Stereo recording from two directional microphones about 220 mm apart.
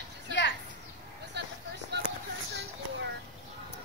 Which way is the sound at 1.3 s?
50° right (ahead or behind).